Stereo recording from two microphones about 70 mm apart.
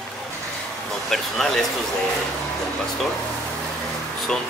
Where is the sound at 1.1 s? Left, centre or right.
Centre.